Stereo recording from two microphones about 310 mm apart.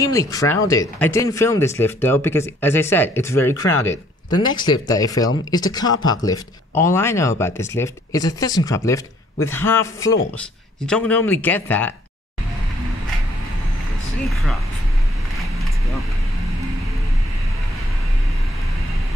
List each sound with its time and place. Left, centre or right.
0.0 s speech: centre